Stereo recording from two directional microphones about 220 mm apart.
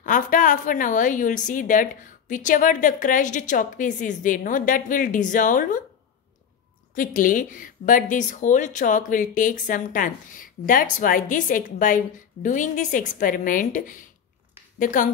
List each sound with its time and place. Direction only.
0.0 s speech: 35° left (ahead or behind)
7.0 s speech: 40° left (ahead or behind)